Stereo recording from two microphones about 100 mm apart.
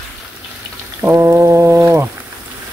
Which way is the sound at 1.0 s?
25° right (ahead or behind).